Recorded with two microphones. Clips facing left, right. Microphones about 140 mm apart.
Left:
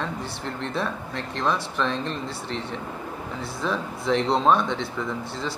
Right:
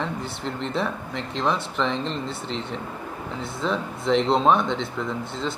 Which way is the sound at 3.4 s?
20° right (ahead or behind).